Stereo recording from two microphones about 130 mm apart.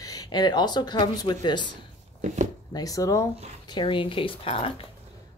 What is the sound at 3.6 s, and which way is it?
Speech, 35° left (ahead or behind).